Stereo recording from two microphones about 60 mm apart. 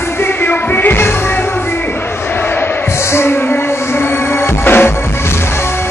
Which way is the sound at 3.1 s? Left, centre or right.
Left.